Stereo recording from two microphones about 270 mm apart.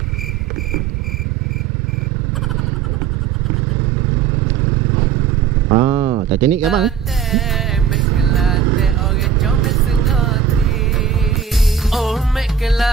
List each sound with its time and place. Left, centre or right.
5.7 s vehicle: centre
6.4 s music: centre